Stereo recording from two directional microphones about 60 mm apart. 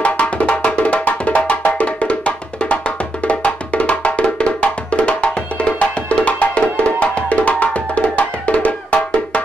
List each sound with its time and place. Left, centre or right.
0.0 s music: left